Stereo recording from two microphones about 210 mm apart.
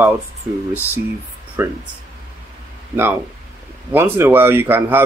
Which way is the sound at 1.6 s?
10° right (ahead or behind).